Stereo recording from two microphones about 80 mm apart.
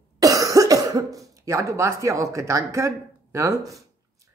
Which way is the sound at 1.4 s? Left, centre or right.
Right.